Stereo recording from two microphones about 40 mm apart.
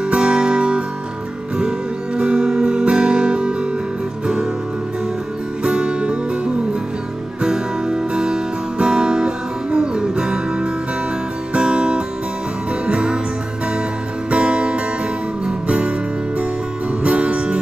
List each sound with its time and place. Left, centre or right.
0.0 s guitar: right
2.1 s music: right
5.6 s music: right
7.4 s guitar: centre
12.8 s music: right
14.3 s music: right
17.0 s music: right